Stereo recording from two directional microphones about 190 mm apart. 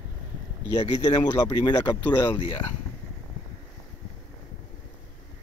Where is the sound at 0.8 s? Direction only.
20° left (ahead or behind).